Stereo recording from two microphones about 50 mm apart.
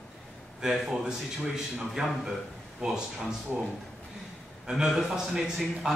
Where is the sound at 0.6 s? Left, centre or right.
Centre.